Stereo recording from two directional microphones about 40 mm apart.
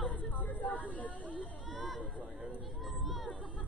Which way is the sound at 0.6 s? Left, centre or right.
Left.